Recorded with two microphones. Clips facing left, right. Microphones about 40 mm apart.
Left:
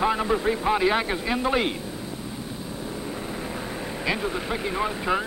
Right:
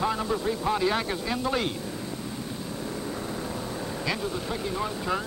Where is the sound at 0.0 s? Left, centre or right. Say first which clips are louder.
Left 4 dB; left.